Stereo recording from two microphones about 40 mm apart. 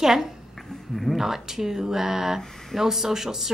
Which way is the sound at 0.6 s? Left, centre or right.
Centre.